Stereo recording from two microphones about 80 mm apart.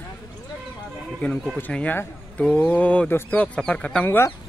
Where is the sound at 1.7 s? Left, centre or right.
Centre.